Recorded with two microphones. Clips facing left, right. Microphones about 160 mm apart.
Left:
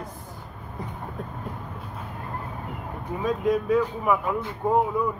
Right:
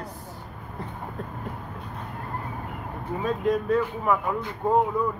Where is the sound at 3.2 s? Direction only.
10° left (ahead or behind).